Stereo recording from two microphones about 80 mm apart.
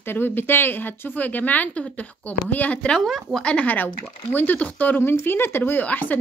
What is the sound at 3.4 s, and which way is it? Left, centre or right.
Speech, centre.